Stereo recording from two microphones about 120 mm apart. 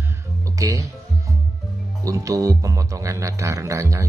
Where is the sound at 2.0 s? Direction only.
25° right (ahead or behind).